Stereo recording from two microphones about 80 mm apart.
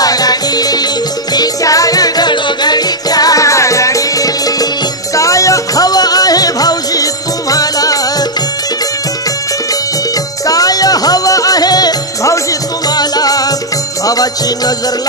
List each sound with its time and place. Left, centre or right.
0.0 s music: left
10.4 s music: left